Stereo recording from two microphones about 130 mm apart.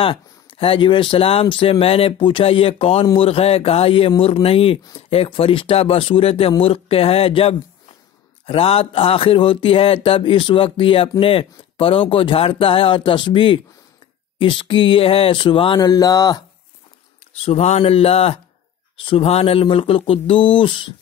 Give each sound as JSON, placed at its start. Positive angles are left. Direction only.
{"t": 0.0, "sound": "speech", "side_deg": 45}
{"t": 15.8, "sound": "a sound", "side_deg": 30}
{"t": 17.3, "sound": "speech", "side_deg": 55}